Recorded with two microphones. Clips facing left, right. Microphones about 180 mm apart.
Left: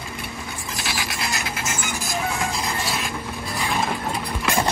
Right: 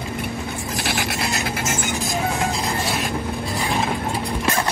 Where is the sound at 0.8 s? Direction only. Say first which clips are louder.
Right 4 dB; 55° right (ahead or behind).